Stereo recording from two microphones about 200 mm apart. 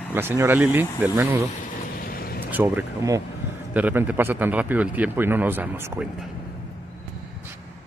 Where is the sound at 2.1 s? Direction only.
50° left (ahead or behind).